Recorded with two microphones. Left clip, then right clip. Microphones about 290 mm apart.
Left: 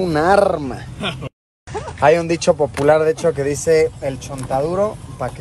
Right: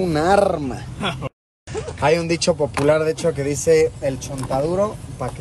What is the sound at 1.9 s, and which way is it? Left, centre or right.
Speech, centre.